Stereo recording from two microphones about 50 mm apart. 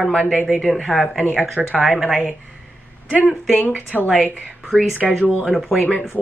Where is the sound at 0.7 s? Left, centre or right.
Centre.